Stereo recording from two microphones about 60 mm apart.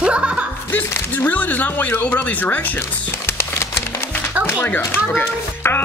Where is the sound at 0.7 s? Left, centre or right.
Left.